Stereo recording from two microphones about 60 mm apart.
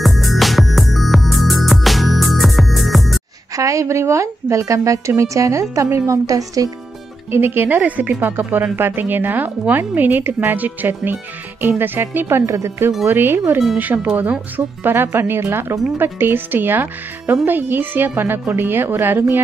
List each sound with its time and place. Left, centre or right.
0.0 s music: centre
3.5 s speech: right
7.2 s a woman's voice: right
13.0 s a woman's voice: right
14.8 s a woman's voice: right